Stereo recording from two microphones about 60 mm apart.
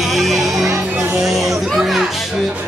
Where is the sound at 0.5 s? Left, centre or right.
Right.